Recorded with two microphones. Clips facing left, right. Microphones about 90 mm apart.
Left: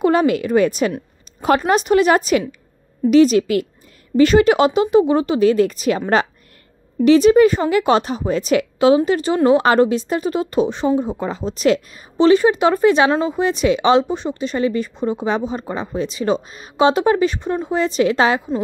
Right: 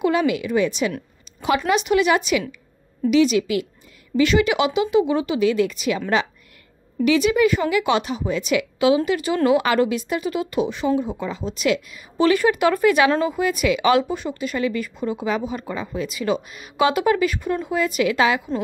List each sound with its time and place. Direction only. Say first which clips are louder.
0.0 s a woman's voice: left 4 dB; 40° left (ahead or behind)
12.2 s speech: left 5 dB; 25° left (ahead or behind)